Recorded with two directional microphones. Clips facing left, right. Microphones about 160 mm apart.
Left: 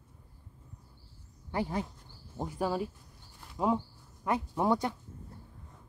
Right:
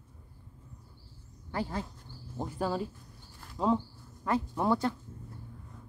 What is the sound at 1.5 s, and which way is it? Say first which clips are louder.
Speech: left 2 dB; 20° left (ahead or behind).